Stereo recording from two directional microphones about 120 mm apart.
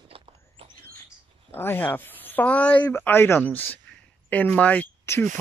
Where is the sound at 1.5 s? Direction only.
20° left (ahead or behind).